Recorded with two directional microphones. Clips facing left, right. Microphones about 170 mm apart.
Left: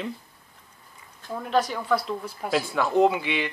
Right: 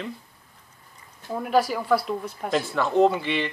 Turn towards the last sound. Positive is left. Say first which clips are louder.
# right 1 dB
turn(degrees=5)  # may be behind; listen again after turning